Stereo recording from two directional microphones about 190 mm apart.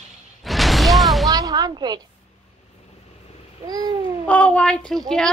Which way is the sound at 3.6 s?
20° right (ahead or behind).